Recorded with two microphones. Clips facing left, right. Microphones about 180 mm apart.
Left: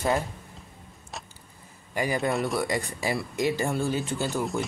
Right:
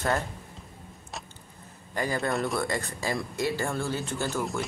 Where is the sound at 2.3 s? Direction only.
Centre (ahead or behind).